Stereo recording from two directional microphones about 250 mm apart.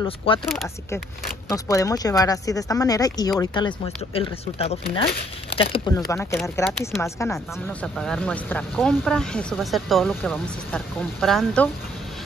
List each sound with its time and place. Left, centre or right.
0.0 s speech: left
0.5 s speech: centre
1.5 s speech: centre
6.0 s speech: centre